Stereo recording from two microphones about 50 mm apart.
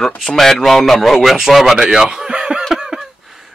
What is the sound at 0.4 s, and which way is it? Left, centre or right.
A man's voice, centre.